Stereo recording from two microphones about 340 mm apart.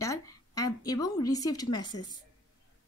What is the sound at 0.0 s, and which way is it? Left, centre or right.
A woman's voice, centre.